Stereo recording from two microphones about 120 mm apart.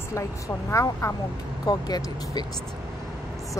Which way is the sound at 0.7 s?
25° left (ahead or behind).